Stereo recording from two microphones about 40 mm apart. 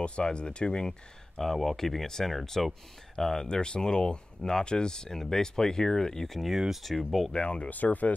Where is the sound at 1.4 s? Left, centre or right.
Centre.